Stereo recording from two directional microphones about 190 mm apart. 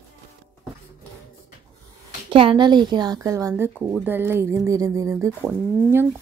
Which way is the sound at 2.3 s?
25° right (ahead or behind).